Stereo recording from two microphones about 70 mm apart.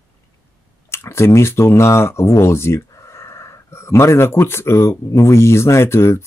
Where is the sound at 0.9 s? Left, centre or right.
Left.